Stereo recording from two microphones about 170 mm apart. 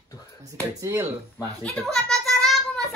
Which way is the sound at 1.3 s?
5° left (ahead or behind).